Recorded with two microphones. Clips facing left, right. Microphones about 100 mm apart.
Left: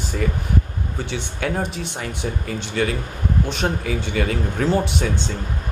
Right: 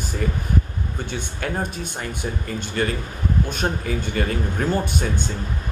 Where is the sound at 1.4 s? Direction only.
70° left (ahead or behind).